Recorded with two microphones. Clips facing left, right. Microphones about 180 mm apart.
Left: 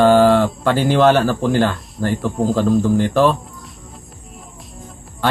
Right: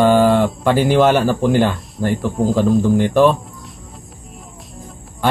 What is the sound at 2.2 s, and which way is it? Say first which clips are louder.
Speech: right 1 dB; centre (ahead or behind).